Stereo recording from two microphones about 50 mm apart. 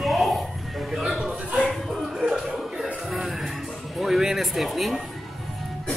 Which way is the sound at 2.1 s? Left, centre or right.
Centre.